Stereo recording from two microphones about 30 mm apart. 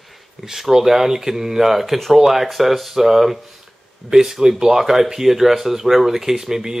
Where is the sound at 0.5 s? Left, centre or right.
Centre.